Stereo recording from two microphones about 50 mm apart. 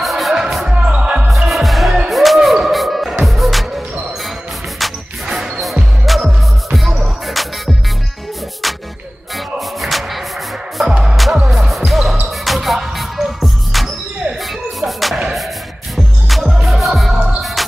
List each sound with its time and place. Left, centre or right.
0.0 s music: centre
0.7 s music: right
1.3 s music: centre
5.2 s basketball bounce: centre
6.1 s music: centre
10.9 s music: centre
11.6 s basketball bounce: centre
12.3 s music: centre
16.3 s music: centre
17.1 s music: right
17.6 s music: centre